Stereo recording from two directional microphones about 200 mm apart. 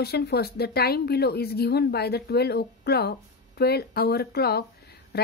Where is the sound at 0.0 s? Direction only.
55° left (ahead or behind).